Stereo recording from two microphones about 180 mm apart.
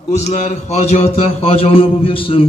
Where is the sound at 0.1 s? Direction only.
40° left (ahead or behind).